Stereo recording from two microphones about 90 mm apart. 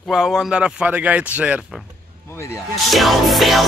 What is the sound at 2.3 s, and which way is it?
Speech, 30° left (ahead or behind).